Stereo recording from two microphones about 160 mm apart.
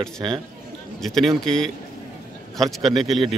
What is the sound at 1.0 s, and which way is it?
A man's voice, centre (ahead or behind).